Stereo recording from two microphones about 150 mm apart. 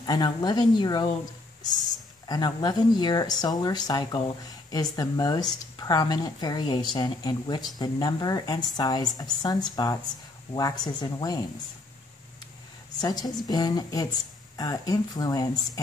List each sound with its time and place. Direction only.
0.0 s speech: 30° left (ahead or behind)
2.2 s speech: 25° left (ahead or behind)
13.0 s speech: 25° left (ahead or behind)